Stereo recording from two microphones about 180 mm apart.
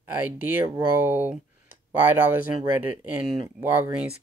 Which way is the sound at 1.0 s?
10° right (ahead or behind).